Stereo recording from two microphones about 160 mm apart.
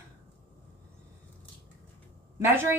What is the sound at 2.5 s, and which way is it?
Speech, 15° right (ahead or behind).